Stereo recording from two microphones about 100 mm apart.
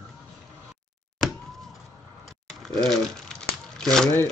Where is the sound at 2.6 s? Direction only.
5° left (ahead or behind).